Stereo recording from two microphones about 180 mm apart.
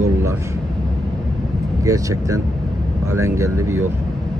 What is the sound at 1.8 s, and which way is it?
Speech, 20° right (ahead or behind).